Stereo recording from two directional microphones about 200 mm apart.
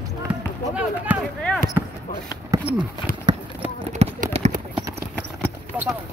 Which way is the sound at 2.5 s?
10° right (ahead or behind).